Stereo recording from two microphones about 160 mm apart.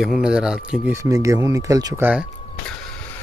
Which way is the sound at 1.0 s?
20° right (ahead or behind).